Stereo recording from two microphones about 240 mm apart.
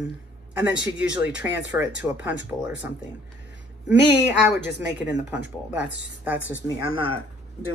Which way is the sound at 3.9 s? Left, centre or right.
Left.